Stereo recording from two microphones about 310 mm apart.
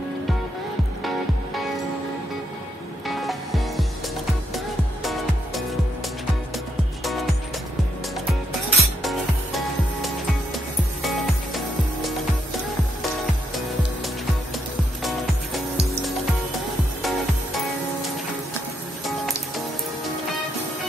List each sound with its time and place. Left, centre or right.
3.1 s music: centre
5.0 s music: centre
8.7 s music: centre
11.0 s music: centre
15.0 s music: centre